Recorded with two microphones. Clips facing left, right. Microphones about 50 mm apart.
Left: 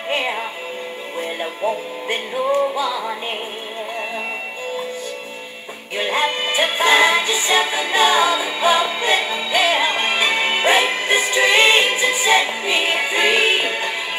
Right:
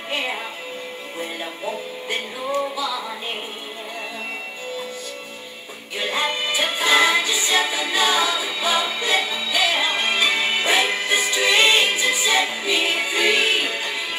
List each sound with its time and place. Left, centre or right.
0.2 s music: centre
5.9 s music: left
11.1 s music: left